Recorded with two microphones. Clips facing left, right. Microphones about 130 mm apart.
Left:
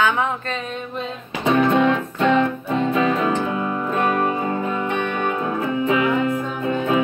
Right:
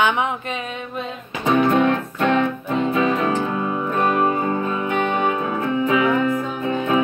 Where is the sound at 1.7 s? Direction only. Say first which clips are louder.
Even; 20° left (ahead or behind).